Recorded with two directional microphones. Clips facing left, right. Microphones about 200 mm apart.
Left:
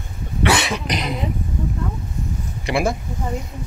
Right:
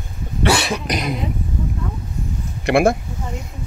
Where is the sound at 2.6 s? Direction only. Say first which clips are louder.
Right 6 dB; 60° right (ahead or behind).